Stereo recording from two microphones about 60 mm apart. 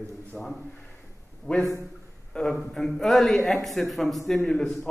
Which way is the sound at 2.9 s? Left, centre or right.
Centre.